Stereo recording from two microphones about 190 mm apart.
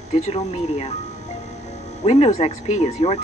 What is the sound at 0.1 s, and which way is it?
Speech, 35° left (ahead or behind).